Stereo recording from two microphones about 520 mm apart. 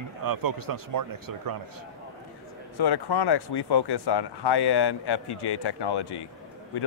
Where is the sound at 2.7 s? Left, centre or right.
Left.